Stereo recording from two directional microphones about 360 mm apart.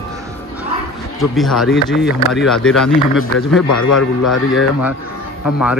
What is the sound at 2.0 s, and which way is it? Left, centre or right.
Speech, left.